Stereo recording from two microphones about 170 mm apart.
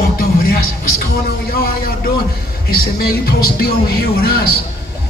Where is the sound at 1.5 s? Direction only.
60° left (ahead or behind).